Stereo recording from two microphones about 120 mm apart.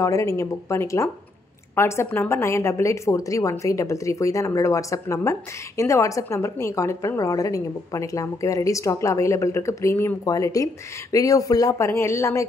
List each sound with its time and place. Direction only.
0.0 s a woman's voice: 25° left (ahead or behind)